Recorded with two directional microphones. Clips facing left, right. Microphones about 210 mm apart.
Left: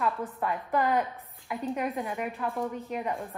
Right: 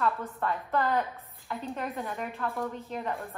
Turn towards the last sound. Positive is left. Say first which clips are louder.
# left 2 dB
turn(degrees=15)  # may be behind; listen again after turning